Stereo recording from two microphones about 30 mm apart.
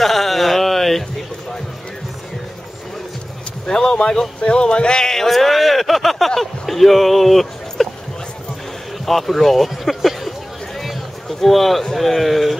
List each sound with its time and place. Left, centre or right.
0.0 s a sound: centre
3.6 s speech: left
5.3 s speech: centre
9.0 s speech: centre